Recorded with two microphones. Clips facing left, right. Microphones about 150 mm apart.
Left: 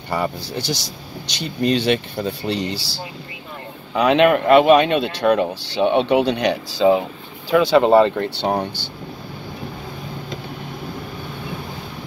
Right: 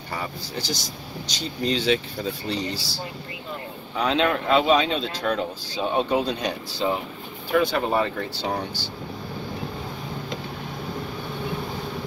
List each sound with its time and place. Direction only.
0.1 s speech: 70° left (ahead or behind)
3.9 s speech: 70° left (ahead or behind)